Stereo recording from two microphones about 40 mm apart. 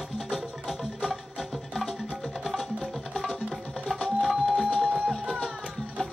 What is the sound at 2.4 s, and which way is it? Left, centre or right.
Music, centre.